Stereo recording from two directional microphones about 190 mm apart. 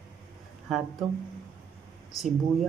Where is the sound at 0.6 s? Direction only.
Centre (ahead or behind).